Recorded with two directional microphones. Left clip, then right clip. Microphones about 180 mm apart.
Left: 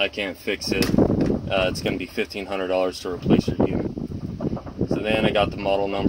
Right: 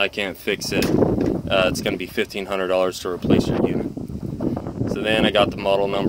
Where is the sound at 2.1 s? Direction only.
50° right (ahead or behind).